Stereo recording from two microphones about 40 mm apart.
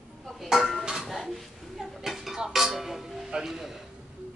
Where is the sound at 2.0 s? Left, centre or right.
Centre.